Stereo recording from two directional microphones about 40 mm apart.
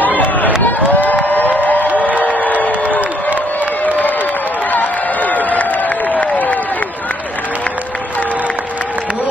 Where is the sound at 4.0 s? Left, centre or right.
Left.